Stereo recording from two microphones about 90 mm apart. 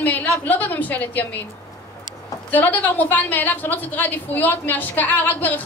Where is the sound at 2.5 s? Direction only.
20° left (ahead or behind).